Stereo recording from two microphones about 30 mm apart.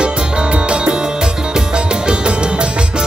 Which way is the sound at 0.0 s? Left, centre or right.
Right.